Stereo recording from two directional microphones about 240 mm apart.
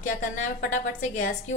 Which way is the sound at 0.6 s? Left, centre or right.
Left.